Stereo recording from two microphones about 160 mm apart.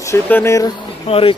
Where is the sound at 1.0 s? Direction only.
35° left (ahead or behind).